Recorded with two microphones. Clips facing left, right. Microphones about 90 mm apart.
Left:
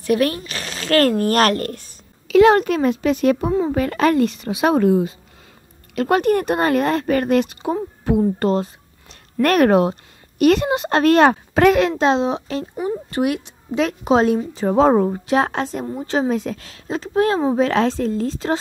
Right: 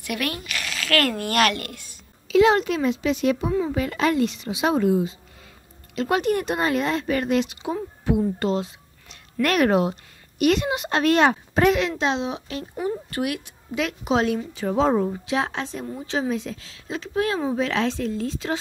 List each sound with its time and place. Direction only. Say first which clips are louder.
0.0 s speech: left 10 dB; 35° left (ahead or behind)
2.2 s speech: left 5 dB; 55° left (ahead or behind); by 3.7 s 40° left (ahead or behind)
3.7 s a woman's voice: left 5 dB; 50° left (ahead or behind); by 12.6 s 35° left (ahead or behind)
12.7 s a woman's voice: left 3 dB; 20° left (ahead or behind)
14.8 s speech: left 6 dB; 50° left (ahead or behind)
16.8 s a woman's voice: left 6 dB; 40° left (ahead or behind)